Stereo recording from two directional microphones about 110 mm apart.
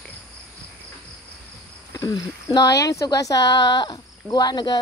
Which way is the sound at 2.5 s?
30° left (ahead or behind).